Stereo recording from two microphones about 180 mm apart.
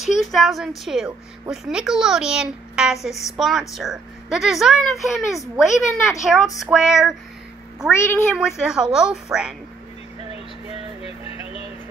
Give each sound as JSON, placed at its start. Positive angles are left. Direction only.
{"t": 0.1, "sound": "a child's voice", "side_deg": 0}
{"t": 8.0, "sound": "speech", "side_deg": 15}
{"t": 8.4, "sound": "a child's voice", "side_deg": -5}
{"t": 11.1, "sound": "music", "side_deg": 35}